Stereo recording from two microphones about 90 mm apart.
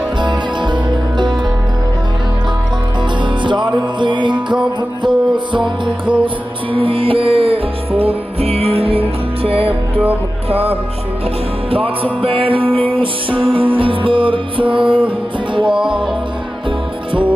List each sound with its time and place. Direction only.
0.2 s music: 60° right (ahead or behind)
3.4 s music: 60° right (ahead or behind)
6.2 s music: 80° right